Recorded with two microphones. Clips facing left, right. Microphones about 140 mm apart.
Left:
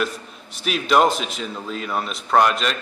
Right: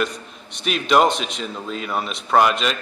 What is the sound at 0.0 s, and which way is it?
A man's voice, 5° left (ahead or behind).